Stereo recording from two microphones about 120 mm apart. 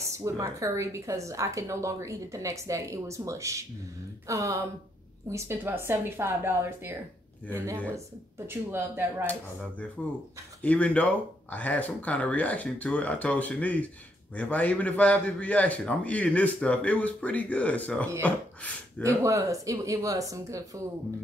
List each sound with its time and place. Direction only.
0.0 s a woman's voice: 25° right (ahead or behind)
9.2 s a man's voice: 15° left (ahead or behind)
19.0 s a woman's voice: 25° right (ahead or behind)